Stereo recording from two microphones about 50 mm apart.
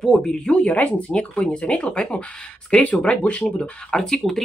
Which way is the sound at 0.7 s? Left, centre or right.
Left.